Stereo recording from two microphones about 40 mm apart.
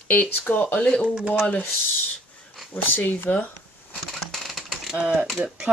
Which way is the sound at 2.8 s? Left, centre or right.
Left.